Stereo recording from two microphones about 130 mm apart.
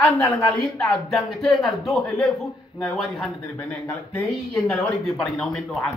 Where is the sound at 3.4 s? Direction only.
15° left (ahead or behind).